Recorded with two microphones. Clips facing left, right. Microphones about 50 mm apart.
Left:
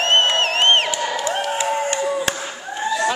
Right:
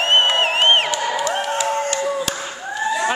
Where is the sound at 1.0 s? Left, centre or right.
Centre.